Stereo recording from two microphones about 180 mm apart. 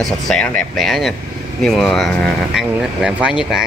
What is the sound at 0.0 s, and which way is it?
Speech, 5° left (ahead or behind).